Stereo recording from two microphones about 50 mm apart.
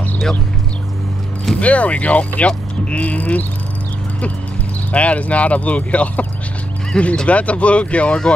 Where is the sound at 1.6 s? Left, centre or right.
Left.